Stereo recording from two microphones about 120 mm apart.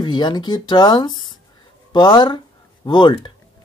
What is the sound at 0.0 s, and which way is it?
Speech, 40° left (ahead or behind).